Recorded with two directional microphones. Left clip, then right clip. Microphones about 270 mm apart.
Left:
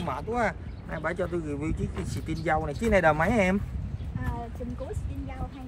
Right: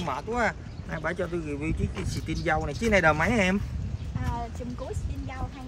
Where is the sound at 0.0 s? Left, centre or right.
Centre.